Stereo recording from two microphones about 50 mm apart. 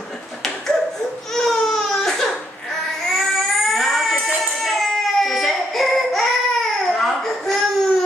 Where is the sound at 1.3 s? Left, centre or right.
Centre.